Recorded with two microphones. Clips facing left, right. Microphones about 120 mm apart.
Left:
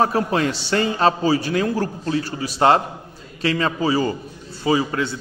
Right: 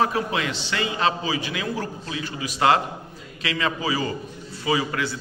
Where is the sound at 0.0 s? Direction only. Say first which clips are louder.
Left 4 dB; 40° left (ahead or behind).